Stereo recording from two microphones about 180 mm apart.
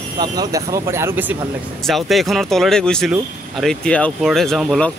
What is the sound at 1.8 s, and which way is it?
Speech, centre (ahead or behind).